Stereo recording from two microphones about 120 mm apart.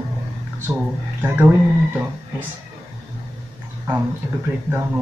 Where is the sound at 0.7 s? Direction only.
15° right (ahead or behind).